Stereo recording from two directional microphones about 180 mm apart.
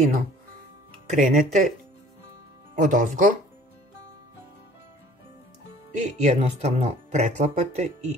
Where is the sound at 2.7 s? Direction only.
45° right (ahead or behind).